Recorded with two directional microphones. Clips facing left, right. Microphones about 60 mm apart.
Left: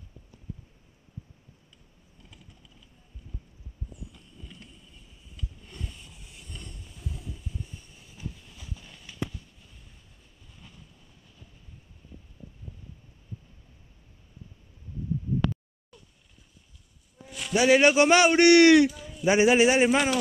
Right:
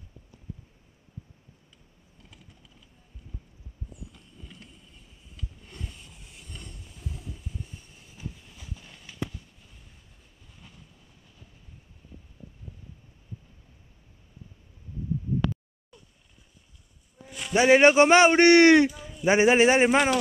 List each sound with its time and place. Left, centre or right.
8.1 s clip-clop: right
17.6 s a man's voice: right
18.9 s a sound: centre
19.2 s a man's voice: right